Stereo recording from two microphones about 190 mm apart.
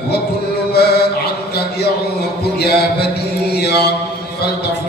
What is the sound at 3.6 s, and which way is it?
Mantra, 60° left (ahead or behind).